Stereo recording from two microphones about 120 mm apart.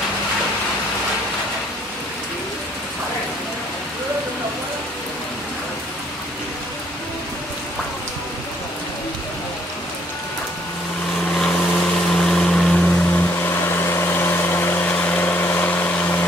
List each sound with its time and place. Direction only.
11.3 s vehicle: 5° left (ahead or behind)